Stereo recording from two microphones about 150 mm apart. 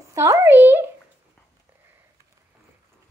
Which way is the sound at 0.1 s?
20° right (ahead or behind).